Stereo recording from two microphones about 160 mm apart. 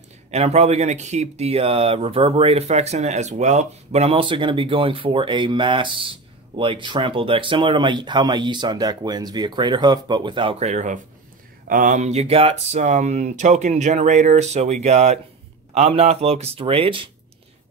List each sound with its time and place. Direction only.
0.3 s speech: 40° right (ahead or behind)
11.6 s speech: 55° right (ahead or behind); by 17.1 s 35° right (ahead or behind)